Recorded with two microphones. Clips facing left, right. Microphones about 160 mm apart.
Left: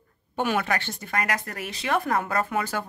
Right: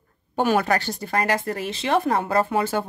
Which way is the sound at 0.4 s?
40° right (ahead or behind).